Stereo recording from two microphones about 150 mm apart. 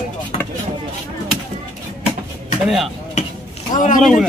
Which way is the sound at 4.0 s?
Centre (ahead or behind).